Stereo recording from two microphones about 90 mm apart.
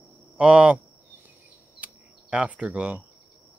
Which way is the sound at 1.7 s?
15° right (ahead or behind).